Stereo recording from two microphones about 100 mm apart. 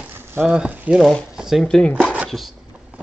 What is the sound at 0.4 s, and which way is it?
Speech, 5° right (ahead or behind).